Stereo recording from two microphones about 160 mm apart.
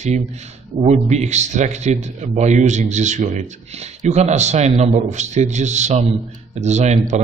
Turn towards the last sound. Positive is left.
turn(degrees=-45)  # may be behind; listen again after turning